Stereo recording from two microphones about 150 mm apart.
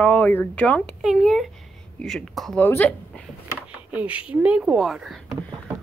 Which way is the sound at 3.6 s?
10° right (ahead or behind).